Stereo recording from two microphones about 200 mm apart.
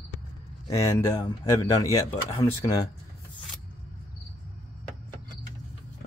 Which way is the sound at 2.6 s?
20° left (ahead or behind).